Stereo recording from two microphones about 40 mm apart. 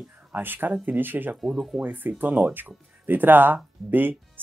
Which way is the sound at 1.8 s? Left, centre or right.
Right.